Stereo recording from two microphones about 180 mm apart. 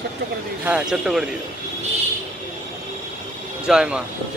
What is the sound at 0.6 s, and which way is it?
Speech, 5° right (ahead or behind).